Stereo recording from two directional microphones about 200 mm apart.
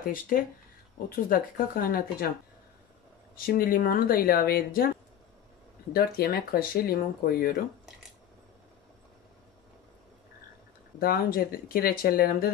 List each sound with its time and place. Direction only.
1.1 s speech: 45° left (ahead or behind)
3.3 s speech: 45° left (ahead or behind)
5.9 s speech: 50° left (ahead or behind)
11.0 s speech: 45° left (ahead or behind)